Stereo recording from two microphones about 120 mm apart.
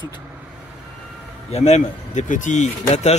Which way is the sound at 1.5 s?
65° left (ahead or behind).